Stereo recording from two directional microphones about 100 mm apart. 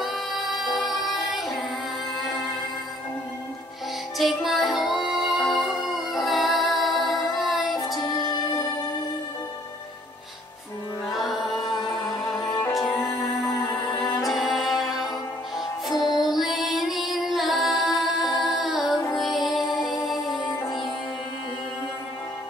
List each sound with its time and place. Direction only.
0.0 s music: centre (ahead or behind)
4.2 s music: centre (ahead or behind)
8.0 s music: 45° left (ahead or behind)
11.1 s music: centre (ahead or behind)
14.2 s music: centre (ahead or behind)
16.1 s music: 45° left (ahead or behind)
16.3 s music: centre (ahead or behind)
18.4 s female singing: centre (ahead or behind)
19.1 s music: centre (ahead or behind)